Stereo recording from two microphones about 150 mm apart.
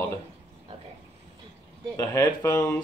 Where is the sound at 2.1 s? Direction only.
20° left (ahead or behind).